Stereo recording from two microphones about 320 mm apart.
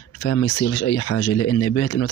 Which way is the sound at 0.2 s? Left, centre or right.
Left.